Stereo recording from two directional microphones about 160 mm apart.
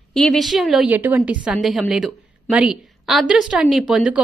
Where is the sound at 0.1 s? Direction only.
Centre (ahead or behind).